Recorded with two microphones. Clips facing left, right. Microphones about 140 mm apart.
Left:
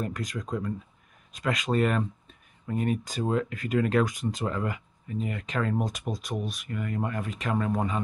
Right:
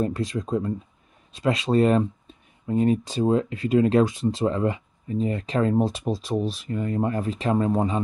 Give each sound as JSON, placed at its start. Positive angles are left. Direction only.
{"t": 0.0, "sound": "speech", "side_deg": -30}